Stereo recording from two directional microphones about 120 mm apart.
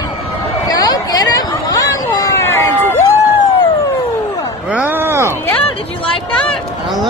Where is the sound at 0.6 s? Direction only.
35° left (ahead or behind).